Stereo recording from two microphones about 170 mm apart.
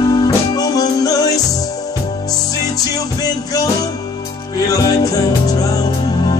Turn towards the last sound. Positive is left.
turn(degrees=20)  # may be behind; listen again after turning